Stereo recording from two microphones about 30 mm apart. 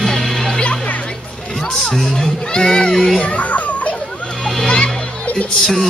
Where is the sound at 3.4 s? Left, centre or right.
Left.